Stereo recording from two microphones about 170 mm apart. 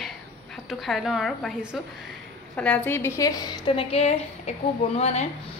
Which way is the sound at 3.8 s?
35° left (ahead or behind).